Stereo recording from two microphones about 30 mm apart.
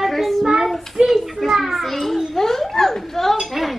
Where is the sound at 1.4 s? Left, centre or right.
Centre.